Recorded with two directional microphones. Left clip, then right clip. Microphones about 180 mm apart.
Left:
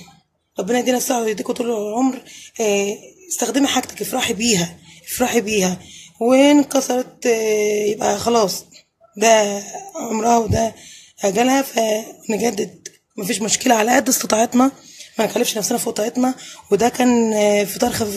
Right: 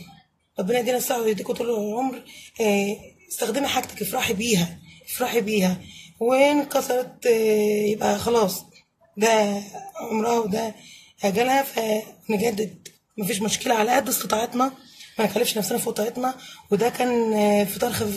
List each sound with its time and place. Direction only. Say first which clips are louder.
0.6 s speech: left 4 dB; 45° left (ahead or behind)